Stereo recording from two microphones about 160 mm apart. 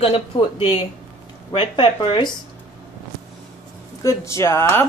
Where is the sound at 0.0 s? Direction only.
35° left (ahead or behind).